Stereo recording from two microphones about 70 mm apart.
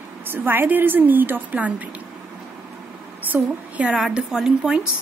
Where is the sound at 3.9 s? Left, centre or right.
Centre.